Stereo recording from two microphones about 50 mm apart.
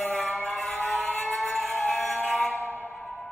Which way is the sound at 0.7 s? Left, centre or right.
Left.